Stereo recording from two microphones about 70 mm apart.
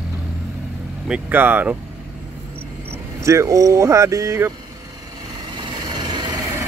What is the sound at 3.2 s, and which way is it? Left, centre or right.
Speech, right.